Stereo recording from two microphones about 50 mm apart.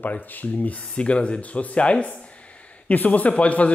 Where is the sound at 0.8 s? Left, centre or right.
Left.